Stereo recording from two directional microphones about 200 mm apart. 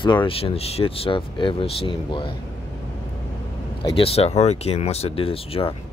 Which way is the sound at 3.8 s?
30° left (ahead or behind).